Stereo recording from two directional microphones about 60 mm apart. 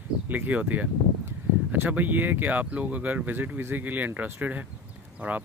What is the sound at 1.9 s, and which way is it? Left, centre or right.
Speech, right.